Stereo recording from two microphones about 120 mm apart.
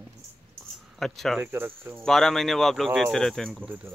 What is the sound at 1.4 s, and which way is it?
Speech, 20° right (ahead or behind).